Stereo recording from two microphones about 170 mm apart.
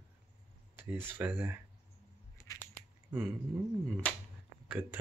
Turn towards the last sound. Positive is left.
turn(degrees=-10)  # may be behind; listen again after turning